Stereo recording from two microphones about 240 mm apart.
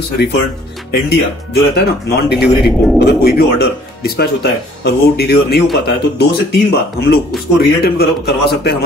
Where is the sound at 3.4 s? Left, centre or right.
Left.